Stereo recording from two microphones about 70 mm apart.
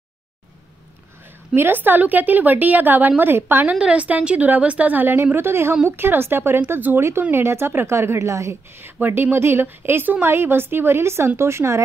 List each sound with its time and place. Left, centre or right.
1.5 s a woman's voice: right
3.6 s a woman's voice: centre; by 8.5 s right
9.0 s a woman's voice: right